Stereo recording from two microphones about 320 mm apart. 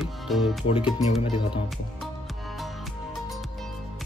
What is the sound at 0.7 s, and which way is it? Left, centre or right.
Speech, centre.